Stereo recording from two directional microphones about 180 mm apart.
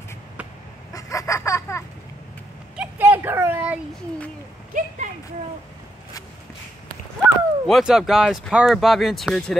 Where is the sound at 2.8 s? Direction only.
10° right (ahead or behind).